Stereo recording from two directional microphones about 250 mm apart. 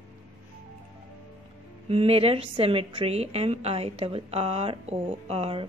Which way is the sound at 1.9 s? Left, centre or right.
Right.